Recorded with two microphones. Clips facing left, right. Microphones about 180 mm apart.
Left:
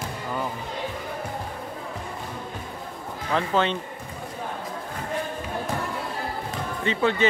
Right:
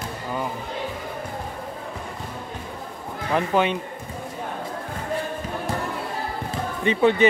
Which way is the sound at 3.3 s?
15° right (ahead or behind).